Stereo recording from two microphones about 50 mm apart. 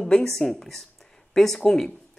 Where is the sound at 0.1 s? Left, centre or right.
Centre.